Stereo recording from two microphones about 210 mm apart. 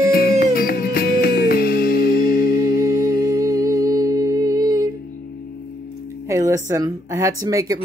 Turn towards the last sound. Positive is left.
turn(degrees=-15)  # may be behind; listen again after turning